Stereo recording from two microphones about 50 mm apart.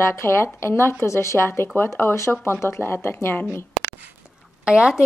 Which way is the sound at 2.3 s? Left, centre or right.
Left.